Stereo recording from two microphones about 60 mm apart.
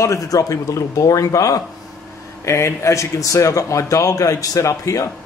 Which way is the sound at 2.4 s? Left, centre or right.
Left.